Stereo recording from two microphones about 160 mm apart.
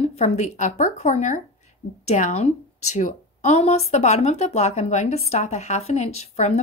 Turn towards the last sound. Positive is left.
turn(degrees=45)  # may be behind; listen again after turning